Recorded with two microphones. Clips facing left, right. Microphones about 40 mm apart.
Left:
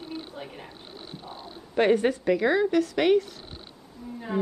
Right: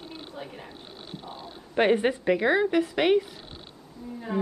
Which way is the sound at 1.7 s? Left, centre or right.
Right.